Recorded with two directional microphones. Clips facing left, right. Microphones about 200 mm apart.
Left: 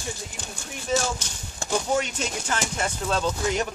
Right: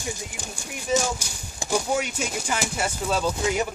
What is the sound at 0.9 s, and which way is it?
Speech, 10° right (ahead or behind).